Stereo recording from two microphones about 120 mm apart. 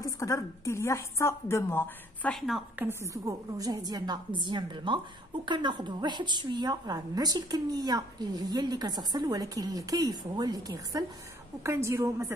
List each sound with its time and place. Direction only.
0.0 s a woman's voice: 25° left (ahead or behind)
2.3 s a woman's voice: centre (ahead or behind)
2.7 s a woman's voice: 15° right (ahead or behind)